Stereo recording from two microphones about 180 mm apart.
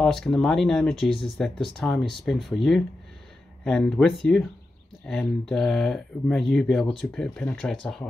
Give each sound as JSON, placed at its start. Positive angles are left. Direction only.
{"t": 0.0, "sound": "speech", "side_deg": 5}